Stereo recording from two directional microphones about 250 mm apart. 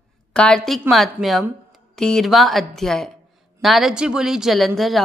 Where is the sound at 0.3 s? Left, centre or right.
Centre.